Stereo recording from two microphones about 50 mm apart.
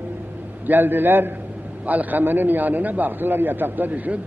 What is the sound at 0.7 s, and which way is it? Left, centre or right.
Speech, right.